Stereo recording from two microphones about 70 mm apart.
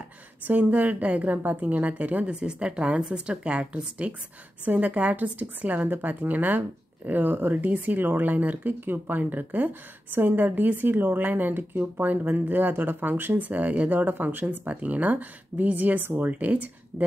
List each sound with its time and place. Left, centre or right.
0.5 s speech: right